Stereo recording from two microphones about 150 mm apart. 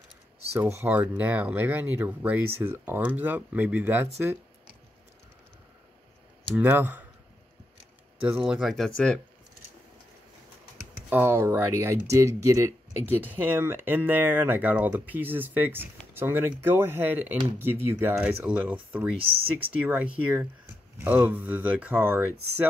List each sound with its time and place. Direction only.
0.6 s speech: 15° right (ahead or behind)
6.5 s speech: 10° right (ahead or behind)
8.2 s speech: 10° right (ahead or behind)
11.0 s speech: 15° right (ahead or behind)